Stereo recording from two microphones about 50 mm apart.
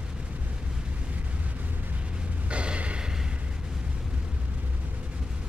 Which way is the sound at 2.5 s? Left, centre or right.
Right.